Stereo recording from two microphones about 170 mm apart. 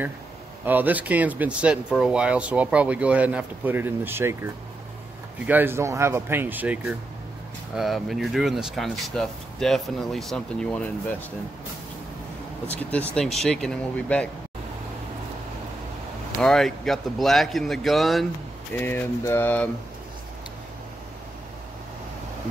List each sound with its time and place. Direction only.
0.7 s speech: 10° right (ahead or behind)
5.5 s speech: 10° right (ahead or behind); by 11.1 s 5° left (ahead or behind)
12.6 s a sound: 10° left (ahead or behind)
13.1 s speech: centre (ahead or behind)
16.3 s speech: 5° left (ahead or behind)
18.8 s a sound: 10° left (ahead or behind)